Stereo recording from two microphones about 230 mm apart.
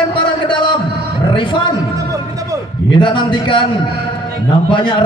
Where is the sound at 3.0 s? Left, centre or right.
Left.